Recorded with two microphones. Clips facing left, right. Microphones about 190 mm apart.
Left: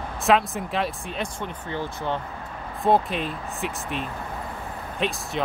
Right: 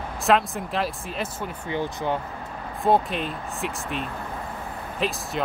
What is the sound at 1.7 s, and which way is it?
Speech, 15° right (ahead or behind).